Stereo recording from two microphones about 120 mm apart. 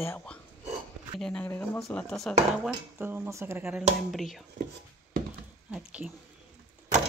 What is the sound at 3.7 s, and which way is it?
Speech, centre (ahead or behind).